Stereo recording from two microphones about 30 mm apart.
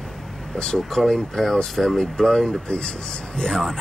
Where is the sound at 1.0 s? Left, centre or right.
Left.